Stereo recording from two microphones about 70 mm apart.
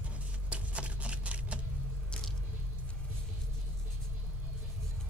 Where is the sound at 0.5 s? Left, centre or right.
Centre.